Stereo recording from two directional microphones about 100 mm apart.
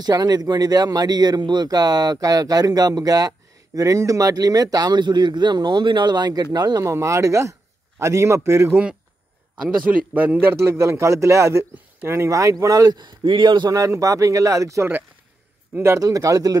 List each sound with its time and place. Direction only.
0.0 s a man's voice: 40° right (ahead or behind)
6.9 s a man's voice: 30° right (ahead or behind)
9.8 s a man's voice: 15° right (ahead or behind); by 13.7 s 50° right (ahead or behind)
13.7 s a man's voice: 35° right (ahead or behind)